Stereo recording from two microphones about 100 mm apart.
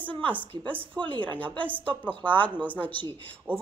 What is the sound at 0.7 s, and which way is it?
Speech, 55° right (ahead or behind).